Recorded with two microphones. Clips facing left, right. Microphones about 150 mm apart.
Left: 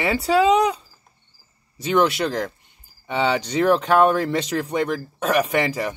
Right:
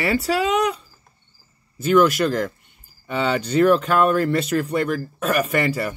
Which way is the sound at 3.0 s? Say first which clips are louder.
Left 1 dB; 90° left.